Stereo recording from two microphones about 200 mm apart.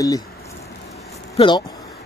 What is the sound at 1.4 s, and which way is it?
Speech, 25° left (ahead or behind).